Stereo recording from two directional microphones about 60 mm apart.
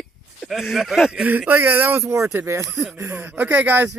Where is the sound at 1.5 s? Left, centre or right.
Right.